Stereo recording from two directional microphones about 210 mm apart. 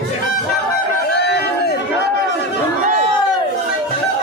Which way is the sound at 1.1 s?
50° left (ahead or behind).